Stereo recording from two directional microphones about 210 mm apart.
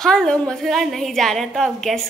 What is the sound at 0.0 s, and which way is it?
A woman's voice, 5° left (ahead or behind).